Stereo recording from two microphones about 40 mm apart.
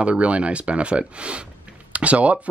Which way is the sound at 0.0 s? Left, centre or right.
Right.